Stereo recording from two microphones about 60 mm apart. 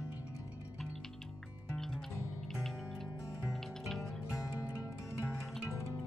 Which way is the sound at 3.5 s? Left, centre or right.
Centre.